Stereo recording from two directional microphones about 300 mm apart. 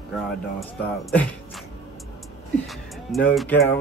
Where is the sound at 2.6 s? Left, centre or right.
Centre.